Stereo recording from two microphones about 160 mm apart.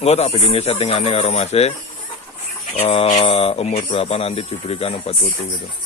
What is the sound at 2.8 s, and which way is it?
Speech, 45° left (ahead or behind).